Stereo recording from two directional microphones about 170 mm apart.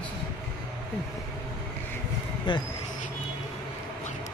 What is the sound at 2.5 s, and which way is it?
Speech, 30° left (ahead or behind).